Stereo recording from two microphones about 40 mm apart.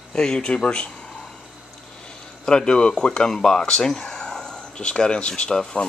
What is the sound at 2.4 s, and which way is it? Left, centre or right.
Speech, left.